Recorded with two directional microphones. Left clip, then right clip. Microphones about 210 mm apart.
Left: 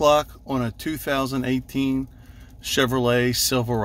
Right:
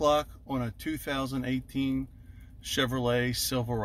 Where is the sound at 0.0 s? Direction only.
20° left (ahead or behind).